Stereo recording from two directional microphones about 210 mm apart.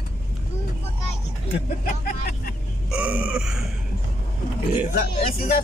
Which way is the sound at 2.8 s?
5° right (ahead or behind).